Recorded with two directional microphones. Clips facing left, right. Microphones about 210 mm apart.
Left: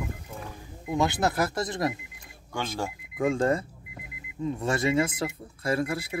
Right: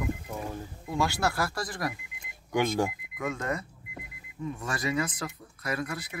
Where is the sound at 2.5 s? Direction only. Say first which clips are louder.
Right 5 dB; 15° right (ahead or behind).